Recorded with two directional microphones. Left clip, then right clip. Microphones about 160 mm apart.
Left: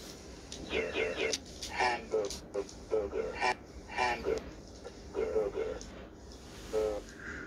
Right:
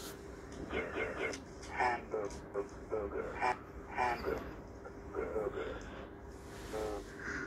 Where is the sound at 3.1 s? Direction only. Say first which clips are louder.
Left 3 dB; 25° left (ahead or behind).